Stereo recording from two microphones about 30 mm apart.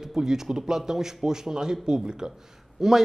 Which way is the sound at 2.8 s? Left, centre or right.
Centre.